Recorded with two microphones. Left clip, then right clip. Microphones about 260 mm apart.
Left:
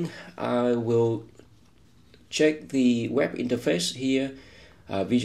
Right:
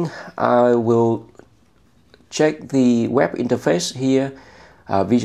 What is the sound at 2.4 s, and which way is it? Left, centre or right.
Speech, right.